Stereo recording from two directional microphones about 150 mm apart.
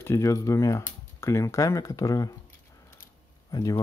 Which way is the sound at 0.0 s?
20° left (ahead or behind).